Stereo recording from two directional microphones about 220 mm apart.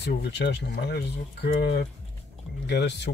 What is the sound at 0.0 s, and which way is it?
Speech, 50° left (ahead or behind).